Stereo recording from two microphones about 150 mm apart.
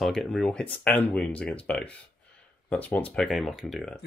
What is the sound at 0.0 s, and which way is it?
Speech, centre (ahead or behind).